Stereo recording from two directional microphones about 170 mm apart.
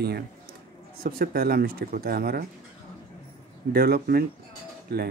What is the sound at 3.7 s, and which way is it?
Speech, 65° right (ahead or behind).